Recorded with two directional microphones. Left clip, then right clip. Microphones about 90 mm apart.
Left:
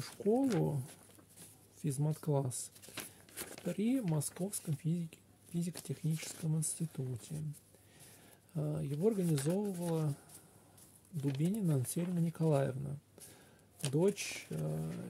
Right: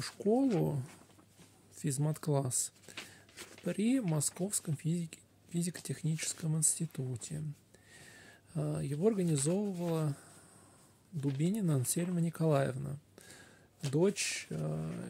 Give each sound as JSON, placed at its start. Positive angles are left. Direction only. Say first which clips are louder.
{"t": 0.0, "sound": "speech", "louder": "right 2 dB", "side_deg": -15}
{"t": 11.4, "sound": "speech", "louder": "right 3 dB", "side_deg": -20}